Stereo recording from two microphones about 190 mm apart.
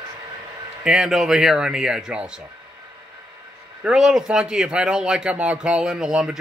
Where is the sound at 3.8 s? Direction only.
5° right (ahead or behind).